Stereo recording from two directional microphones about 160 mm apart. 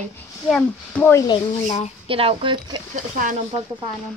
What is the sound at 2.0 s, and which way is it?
Speech, 35° right (ahead or behind).